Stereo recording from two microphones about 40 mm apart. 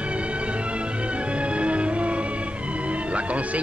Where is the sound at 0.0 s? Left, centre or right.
Right.